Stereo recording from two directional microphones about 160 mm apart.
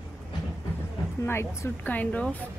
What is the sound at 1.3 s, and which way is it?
Speech, 15° left (ahead or behind).